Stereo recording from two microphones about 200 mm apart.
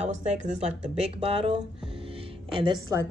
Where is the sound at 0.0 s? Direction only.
30° right (ahead or behind).